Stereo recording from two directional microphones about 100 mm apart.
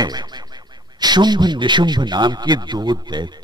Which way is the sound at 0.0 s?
45° right (ahead or behind).